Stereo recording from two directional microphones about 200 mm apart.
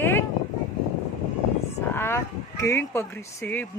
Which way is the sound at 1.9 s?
10° left (ahead or behind).